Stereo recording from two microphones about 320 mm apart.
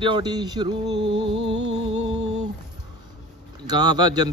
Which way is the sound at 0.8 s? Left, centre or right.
Right.